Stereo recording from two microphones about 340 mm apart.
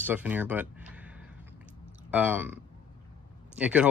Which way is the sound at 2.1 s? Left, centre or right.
Centre.